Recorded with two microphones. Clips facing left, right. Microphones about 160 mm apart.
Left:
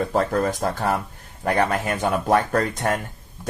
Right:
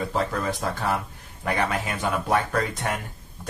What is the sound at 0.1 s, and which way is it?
Speech, 50° left (ahead or behind).